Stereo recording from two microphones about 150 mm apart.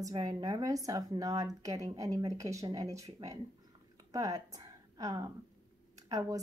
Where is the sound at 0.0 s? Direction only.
25° right (ahead or behind).